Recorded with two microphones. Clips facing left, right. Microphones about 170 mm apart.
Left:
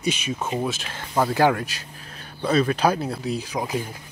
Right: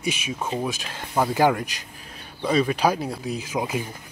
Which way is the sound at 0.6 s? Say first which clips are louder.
Left 1 dB; 15° right (ahead or behind).